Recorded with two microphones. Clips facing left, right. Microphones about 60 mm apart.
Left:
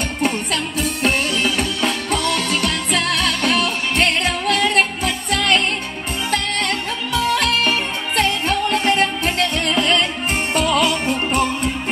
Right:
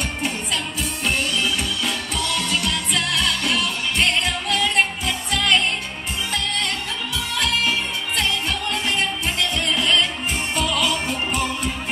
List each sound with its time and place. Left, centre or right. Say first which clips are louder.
0.2 s music: left 8 dB; left